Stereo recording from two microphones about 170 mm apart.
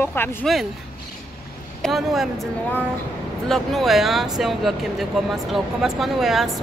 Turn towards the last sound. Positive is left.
turn(degrees=0)  # may be behind; listen again after turning